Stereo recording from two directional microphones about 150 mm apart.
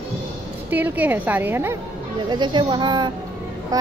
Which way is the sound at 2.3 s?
30° right (ahead or behind).